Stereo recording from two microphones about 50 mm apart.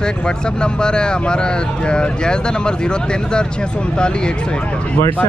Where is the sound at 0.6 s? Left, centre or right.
Centre.